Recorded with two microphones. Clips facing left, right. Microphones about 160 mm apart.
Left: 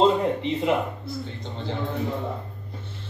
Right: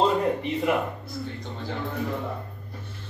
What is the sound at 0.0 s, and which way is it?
Speech, 25° left (ahead or behind).